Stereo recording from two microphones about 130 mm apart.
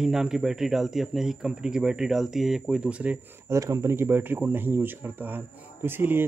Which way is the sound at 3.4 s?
25° right (ahead or behind).